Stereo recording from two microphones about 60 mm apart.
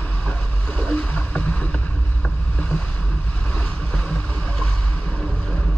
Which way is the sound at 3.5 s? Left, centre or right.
Left.